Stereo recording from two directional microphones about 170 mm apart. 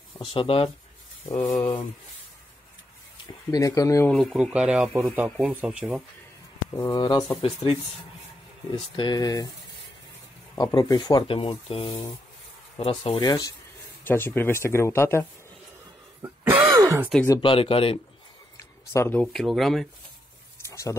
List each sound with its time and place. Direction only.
0.1 s speech: 30° left (ahead or behind)
3.4 s speech: 20° left (ahead or behind)
4.1 s speech: centre (ahead or behind)
6.7 s speech: 15° left (ahead or behind)
7.0 s speech: 25° left (ahead or behind)
8.9 s speech: 25° left (ahead or behind)
10.6 s speech: 25° left (ahead or behind)
14.0 s speech: 15° left (ahead or behind)
16.2 s throat clearing: 10° right (ahead or behind)
17.3 s speech: 30° left (ahead or behind)
18.6 s a sound: 15° left (ahead or behind)
19.2 s speech: centre (ahead or behind)